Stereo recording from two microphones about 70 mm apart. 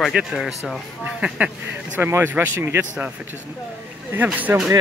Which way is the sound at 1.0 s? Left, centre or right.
Centre.